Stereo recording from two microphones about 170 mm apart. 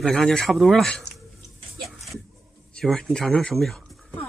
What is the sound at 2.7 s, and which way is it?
Speech, 5° left (ahead or behind).